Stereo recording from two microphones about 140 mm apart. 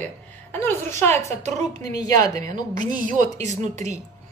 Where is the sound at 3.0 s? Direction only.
60° right (ahead or behind).